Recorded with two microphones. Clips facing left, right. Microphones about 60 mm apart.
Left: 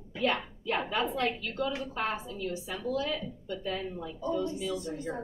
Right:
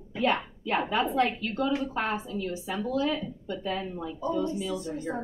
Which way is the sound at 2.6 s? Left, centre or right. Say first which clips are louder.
Right 5 dB; right.